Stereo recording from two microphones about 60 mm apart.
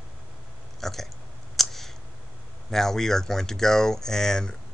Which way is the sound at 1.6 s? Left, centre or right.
Centre.